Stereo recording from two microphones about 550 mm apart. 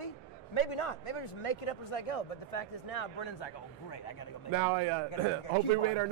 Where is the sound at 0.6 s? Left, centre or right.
Left.